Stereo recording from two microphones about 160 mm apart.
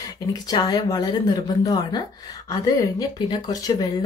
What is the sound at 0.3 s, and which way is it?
Speech, 25° left (ahead or behind).